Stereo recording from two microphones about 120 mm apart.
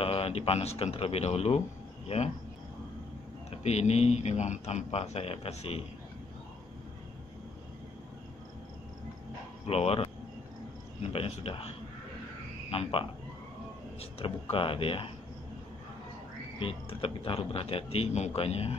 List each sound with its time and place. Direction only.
0.0 s speech: 50° left (ahead or behind)
3.4 s speech: 65° left (ahead or behind)
9.7 s speech: 55° left (ahead or behind)
12.7 s speech: 45° left (ahead or behind)
14.2 s speech: 50° left (ahead or behind)
16.5 s speech: 50° left (ahead or behind)